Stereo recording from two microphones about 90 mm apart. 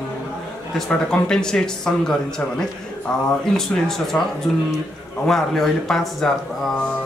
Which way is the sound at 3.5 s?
5° left (ahead or behind).